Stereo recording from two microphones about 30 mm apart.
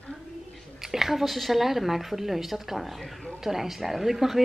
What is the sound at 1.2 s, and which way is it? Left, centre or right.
Speech, centre.